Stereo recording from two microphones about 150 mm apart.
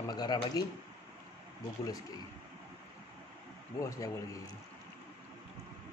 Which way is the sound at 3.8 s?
20° left (ahead or behind).